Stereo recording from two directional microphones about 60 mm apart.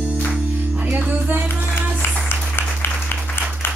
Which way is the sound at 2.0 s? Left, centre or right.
Left.